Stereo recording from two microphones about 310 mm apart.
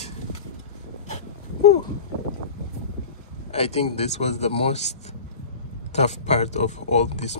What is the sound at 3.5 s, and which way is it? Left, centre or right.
Speech, centre.